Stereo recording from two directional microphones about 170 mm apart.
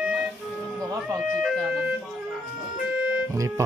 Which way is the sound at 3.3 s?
20° right (ahead or behind).